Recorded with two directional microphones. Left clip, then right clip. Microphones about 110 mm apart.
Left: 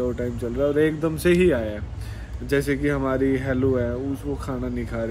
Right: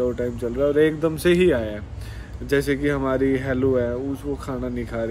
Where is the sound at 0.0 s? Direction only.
10° right (ahead or behind).